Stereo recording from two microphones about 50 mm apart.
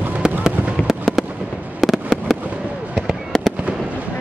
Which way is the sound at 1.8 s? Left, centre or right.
Centre.